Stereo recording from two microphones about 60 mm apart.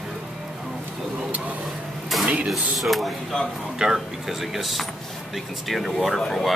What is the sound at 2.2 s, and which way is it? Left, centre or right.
Speech, centre.